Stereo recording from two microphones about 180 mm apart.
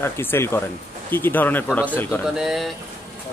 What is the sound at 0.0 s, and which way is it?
Speech, 15° left (ahead or behind).